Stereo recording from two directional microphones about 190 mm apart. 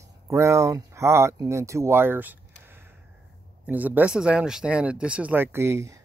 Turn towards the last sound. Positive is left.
turn(degrees=-15)  # may be behind; listen again after turning